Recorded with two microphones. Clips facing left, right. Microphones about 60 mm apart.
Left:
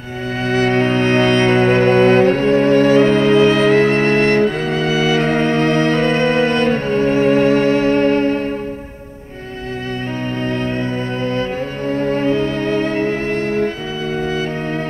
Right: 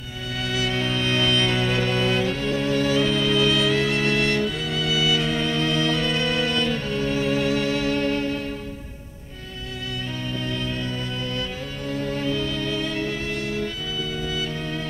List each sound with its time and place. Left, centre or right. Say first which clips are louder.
0.5 s music: left 11 dB; left
10.8 s music: left 9 dB; left